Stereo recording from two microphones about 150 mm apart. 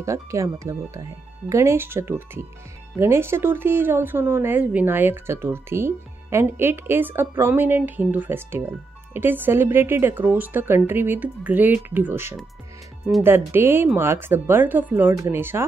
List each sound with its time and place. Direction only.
0.0 s speech: 20° right (ahead or behind)